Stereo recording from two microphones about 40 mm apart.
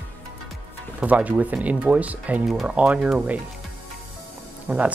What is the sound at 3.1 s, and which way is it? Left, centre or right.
Speech, right.